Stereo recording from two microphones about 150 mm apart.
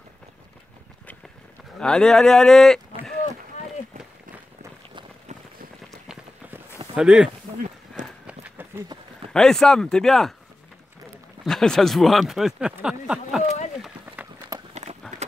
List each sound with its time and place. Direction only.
1.8 s speech: 5° left (ahead or behind)
7.0 s speech: 5° right (ahead or behind)
8.3 s run: 10° right (ahead or behind)
9.3 s speech: 5° left (ahead or behind)
11.4 s speech: 5° left (ahead or behind)
14.1 s run: 10° right (ahead or behind)
14.7 s run: 50° right (ahead or behind)